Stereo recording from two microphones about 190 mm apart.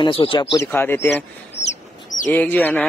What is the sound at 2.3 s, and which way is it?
Speech, 10° left (ahead or behind).